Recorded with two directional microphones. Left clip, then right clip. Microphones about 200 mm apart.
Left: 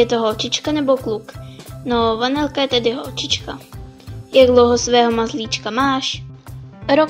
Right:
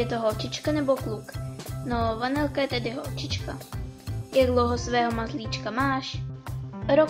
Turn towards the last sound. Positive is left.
turn(degrees=30)  # may be behind; listen again after turning